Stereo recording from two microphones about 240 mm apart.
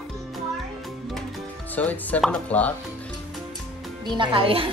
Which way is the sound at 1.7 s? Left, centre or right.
Centre.